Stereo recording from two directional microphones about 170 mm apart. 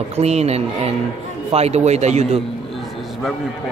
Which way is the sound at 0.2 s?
40° right (ahead or behind).